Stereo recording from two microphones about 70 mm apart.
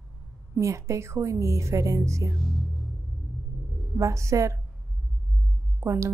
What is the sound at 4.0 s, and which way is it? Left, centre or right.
Speech, right.